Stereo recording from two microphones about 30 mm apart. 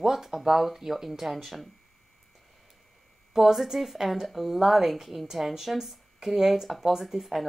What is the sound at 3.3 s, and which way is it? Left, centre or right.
A woman's voice, centre.